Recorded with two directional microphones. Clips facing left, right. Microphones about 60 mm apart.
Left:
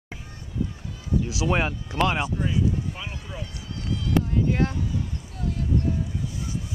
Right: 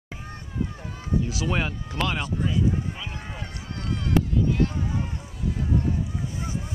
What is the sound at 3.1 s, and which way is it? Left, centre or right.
Run, right.